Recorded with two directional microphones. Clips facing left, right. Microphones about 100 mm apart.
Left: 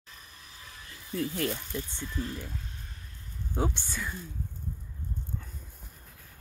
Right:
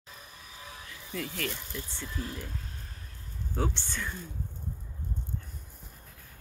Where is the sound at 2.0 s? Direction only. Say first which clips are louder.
Left 2 dB; 5° right (ahead or behind).